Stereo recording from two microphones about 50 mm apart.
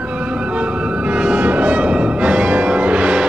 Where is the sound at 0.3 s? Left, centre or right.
Right.